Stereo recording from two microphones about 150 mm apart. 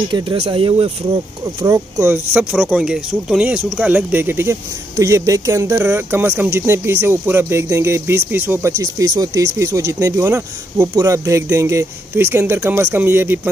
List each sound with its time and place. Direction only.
0.1 s speech: 35° right (ahead or behind)
2.0 s speech: 10° right (ahead or behind)